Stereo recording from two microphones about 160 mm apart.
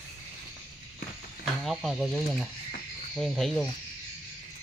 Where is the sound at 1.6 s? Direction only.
Centre (ahead or behind).